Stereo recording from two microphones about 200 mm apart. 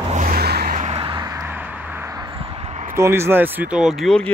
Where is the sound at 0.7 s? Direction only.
30° right (ahead or behind).